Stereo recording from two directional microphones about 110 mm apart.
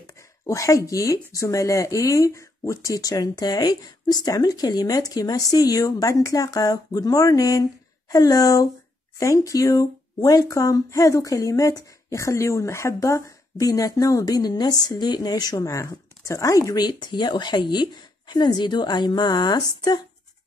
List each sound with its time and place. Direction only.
0.0 s speech: 30° left (ahead or behind)